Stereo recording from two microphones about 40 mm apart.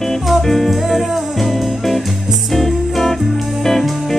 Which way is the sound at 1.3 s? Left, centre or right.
Centre.